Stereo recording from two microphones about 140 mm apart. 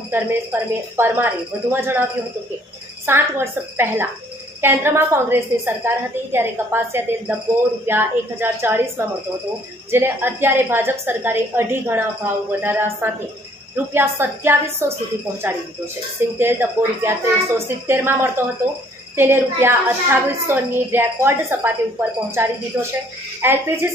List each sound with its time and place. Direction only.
0.1 s a woman's voice: 15° right (ahead or behind)
3.1 s a woman's voice: 15° right (ahead or behind)
16.3 s a woman's voice: 15° right (ahead or behind)